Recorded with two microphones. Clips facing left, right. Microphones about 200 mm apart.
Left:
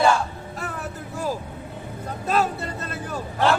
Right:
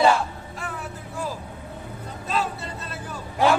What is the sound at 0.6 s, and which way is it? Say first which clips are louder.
Music: left 2 dB; 40° left (ahead or behind).